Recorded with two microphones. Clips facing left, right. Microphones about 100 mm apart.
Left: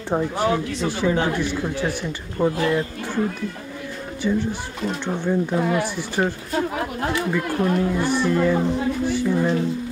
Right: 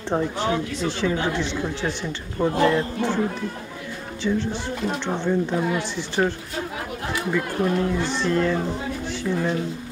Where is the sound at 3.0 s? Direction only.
20° right (ahead or behind).